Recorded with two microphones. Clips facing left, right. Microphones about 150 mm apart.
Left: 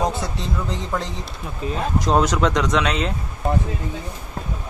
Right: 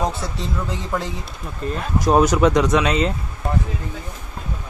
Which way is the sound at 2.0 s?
10° right (ahead or behind).